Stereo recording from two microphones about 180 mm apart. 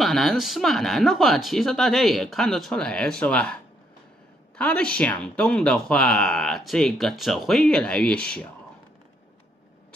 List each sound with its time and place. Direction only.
0.0 s speech: centre (ahead or behind)
4.6 s speech: 5° left (ahead or behind)